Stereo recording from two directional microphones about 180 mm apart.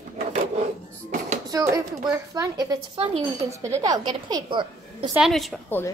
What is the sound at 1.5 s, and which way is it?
A woman's voice, 20° right (ahead or behind).